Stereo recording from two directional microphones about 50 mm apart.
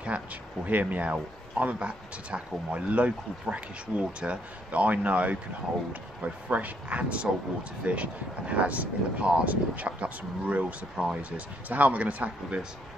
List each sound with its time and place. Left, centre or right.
0.1 s speech: right
6.5 s speech: right